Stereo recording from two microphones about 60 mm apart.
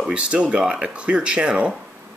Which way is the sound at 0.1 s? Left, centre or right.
Centre.